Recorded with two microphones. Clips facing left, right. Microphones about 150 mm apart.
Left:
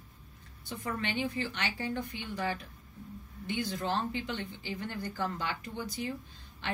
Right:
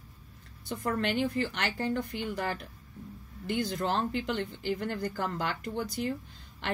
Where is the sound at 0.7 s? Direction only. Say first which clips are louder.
Right 5 dB; 55° right (ahead or behind).